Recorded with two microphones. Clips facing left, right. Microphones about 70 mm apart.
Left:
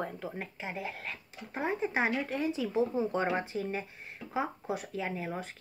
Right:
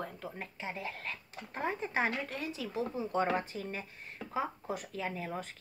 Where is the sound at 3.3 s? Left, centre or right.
Centre.